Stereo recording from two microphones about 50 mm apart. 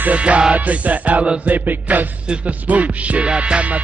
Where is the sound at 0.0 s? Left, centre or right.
Right.